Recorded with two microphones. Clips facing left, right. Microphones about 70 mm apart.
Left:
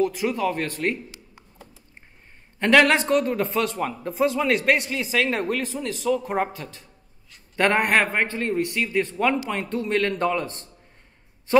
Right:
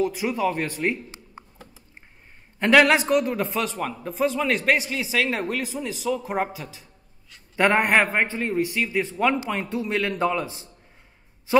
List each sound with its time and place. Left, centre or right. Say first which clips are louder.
0.0 s speech: left 1 dB; centre
1.4 s a sound: right 8 dB; right
2.6 s a man's voice: even; centre